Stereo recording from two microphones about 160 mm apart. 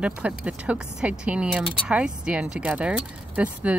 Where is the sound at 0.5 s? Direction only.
5° right (ahead or behind).